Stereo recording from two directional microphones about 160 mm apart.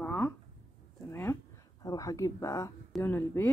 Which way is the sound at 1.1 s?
15° left (ahead or behind).